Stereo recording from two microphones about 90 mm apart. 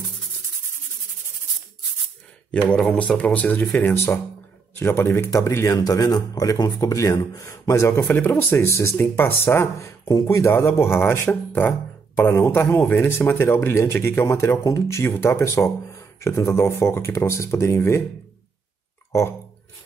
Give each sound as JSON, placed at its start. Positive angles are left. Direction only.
{"t": 2.7, "sound": "a man's voice", "side_deg": 15}